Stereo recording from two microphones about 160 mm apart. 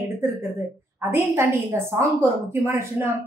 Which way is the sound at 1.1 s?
15° right (ahead or behind).